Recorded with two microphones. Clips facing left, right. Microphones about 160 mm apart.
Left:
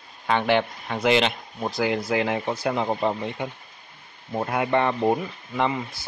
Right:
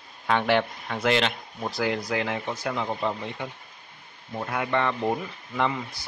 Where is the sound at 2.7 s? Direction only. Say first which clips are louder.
Left 4 dB; 30° left (ahead or behind).